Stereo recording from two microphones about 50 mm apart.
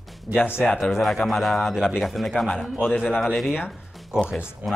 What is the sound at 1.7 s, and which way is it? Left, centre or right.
Speech, centre.